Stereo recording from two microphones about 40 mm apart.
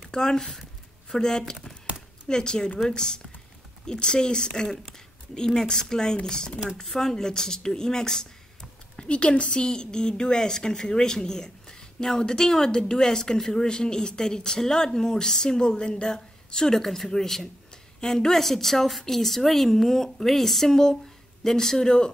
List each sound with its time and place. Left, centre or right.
0.1 s a woman's voice: centre
8.9 s a woman's voice: left
16.7 s a woman's voice: centre